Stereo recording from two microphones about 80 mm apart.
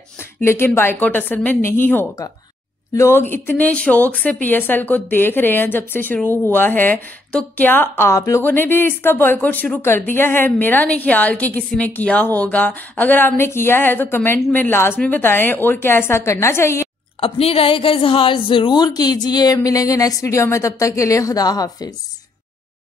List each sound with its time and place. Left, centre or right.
0.4 s speech: left
8.4 s speech: left
17.2 s a woman's voice: left